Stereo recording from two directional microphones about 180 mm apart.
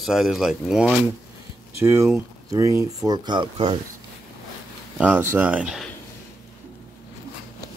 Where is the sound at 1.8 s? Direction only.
15° right (ahead or behind).